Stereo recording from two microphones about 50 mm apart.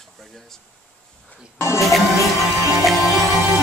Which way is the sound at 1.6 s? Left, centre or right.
Left.